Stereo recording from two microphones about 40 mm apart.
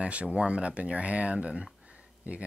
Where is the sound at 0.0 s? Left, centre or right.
Right.